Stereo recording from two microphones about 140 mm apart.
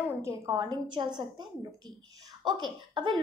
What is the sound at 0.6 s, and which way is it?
A woman's voice, 35° right (ahead or behind).